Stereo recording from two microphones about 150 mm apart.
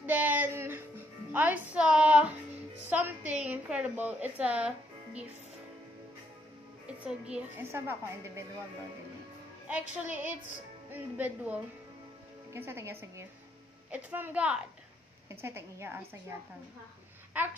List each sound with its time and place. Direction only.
0.0 s music: 10° right (ahead or behind)
2.9 s a woman's voice: 10° right (ahead or behind)
6.9 s a woman's voice: 10° right (ahead or behind)
9.7 s a woman's voice: 10° right (ahead or behind)
17.3 s babbling: 10° right (ahead or behind)